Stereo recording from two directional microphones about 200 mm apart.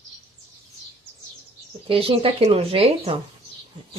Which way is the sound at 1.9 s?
30° right (ahead or behind).